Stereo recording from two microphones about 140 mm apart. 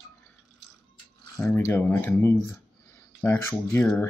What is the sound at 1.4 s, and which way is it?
Speech, 20° left (ahead or behind).